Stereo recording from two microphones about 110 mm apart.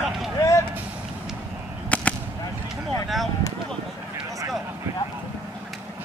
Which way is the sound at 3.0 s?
Centre (ahead or behind).